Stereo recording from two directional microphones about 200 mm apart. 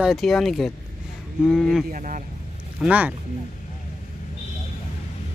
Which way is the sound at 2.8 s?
5° right (ahead or behind).